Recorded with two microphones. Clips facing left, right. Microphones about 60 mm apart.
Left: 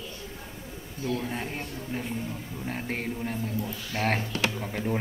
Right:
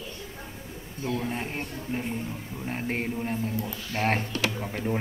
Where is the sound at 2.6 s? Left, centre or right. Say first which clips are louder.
Right 2 dB; centre.